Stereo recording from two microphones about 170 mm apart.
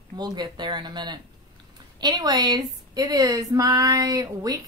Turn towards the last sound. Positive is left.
turn(degrees=-20)  # may be behind; listen again after turning